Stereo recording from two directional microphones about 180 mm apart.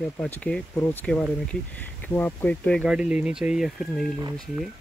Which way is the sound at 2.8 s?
5° right (ahead or behind).